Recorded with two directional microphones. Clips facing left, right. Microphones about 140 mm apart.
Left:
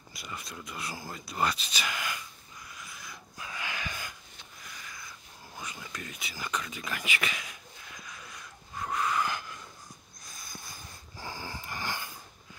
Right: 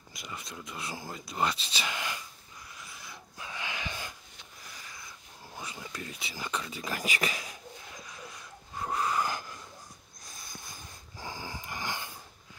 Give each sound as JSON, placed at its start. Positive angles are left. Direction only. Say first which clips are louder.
{"t": 0.1, "sound": "speech", "louder": "even", "side_deg": -20}
{"t": 2.8, "sound": "a sound", "louder": "even", "side_deg": -30}
{"t": 10.5, "sound": "snort", "louder": "left 1 dB", "side_deg": -20}